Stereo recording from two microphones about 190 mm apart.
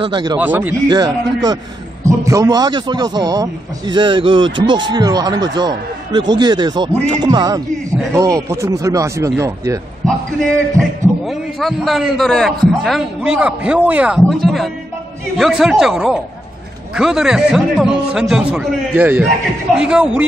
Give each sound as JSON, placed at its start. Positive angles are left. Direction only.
{"t": 0.0, "sound": "a man's voice", "side_deg": -25}
{"t": 0.4, "sound": "speech", "side_deg": -10}
{"t": 0.8, "sound": "a man's voice", "side_deg": -20}
{"t": 10.8, "sound": "a man's voice", "side_deg": 5}